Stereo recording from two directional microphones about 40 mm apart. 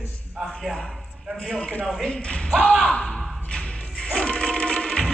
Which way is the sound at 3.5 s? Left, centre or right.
Left.